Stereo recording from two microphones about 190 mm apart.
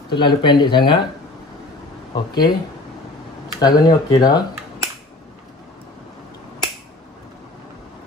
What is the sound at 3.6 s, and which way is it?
Speech, 20° left (ahead or behind).